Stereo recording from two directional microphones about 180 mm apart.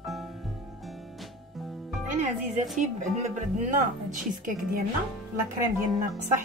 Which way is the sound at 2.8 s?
40° right (ahead or behind).